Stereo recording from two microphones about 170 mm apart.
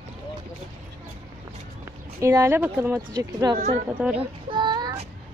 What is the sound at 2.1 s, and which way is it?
Speech, 15° right (ahead or behind).